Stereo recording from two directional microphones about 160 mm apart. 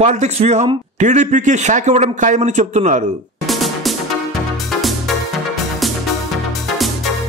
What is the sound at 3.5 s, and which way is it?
Music, centre (ahead or behind).